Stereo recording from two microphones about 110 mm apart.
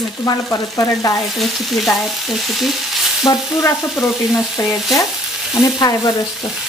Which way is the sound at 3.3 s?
30° left (ahead or behind).